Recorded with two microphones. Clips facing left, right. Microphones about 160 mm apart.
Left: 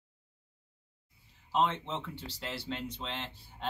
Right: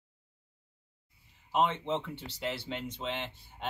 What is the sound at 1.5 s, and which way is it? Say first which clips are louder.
Speech: right 2 dB; 15° right (ahead or behind).